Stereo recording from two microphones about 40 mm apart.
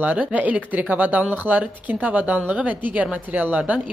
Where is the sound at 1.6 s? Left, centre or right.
Right.